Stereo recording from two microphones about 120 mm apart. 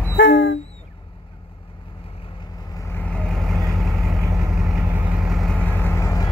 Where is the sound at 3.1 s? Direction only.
5° left (ahead or behind).